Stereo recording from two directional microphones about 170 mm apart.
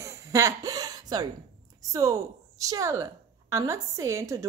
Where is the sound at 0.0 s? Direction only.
20° right (ahead or behind).